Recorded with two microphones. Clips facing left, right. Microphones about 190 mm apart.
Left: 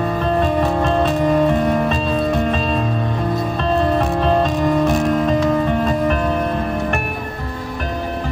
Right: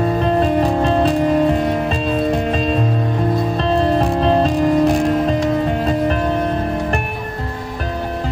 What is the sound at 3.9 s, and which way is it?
Music, 35° right (ahead or behind).